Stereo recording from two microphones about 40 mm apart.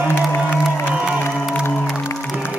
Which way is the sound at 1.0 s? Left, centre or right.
Right.